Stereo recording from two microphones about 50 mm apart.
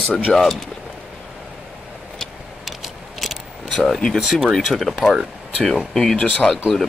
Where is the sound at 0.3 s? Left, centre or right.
Centre.